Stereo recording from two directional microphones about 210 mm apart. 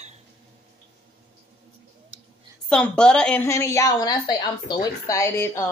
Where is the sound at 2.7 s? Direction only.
5° left (ahead or behind).